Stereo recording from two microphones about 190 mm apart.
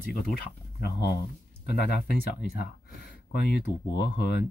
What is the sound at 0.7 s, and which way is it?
Speech, 60° left (ahead or behind).